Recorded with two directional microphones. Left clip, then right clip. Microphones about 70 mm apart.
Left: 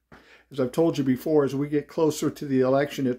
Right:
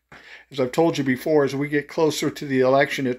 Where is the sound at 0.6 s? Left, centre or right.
Left.